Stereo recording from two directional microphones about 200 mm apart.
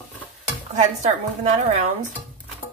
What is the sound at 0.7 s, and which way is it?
Speech, 35° right (ahead or behind).